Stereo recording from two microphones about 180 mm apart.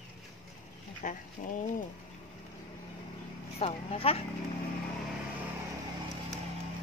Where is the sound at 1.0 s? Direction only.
45° left (ahead or behind).